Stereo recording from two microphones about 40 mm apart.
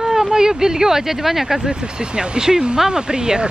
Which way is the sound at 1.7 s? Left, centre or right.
Right.